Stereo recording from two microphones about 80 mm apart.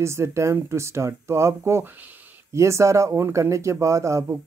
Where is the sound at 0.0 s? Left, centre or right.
Right.